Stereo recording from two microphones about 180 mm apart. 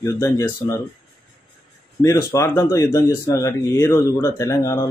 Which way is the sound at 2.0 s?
15° left (ahead or behind).